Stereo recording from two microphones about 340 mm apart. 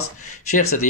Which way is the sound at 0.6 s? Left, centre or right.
Left.